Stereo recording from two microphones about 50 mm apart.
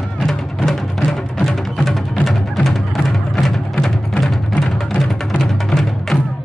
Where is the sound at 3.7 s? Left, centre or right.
Centre.